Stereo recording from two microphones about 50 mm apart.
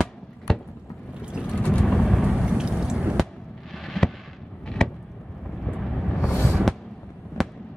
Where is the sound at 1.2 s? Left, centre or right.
Centre.